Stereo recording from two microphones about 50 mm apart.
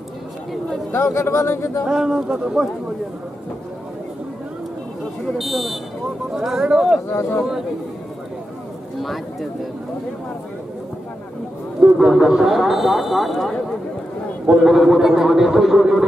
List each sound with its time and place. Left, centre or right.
0.9 s speech: left
1.9 s speech: centre
5.4 s speech: centre
6.3 s speech: centre
7.1 s speech: left
9.0 s speech: centre
11.8 s speech: centre
14.7 s speech: centre